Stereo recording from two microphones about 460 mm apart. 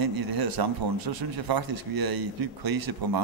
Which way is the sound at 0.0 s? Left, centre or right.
Right.